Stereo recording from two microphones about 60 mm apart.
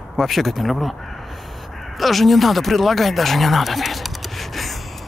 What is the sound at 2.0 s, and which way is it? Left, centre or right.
Speech, centre.